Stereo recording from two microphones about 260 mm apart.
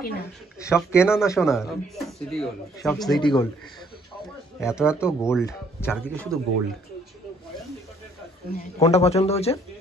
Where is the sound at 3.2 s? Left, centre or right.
Centre.